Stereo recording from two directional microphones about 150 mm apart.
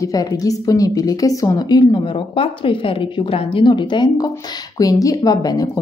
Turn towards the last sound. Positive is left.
turn(degrees=25)  # may be behind; listen again after turning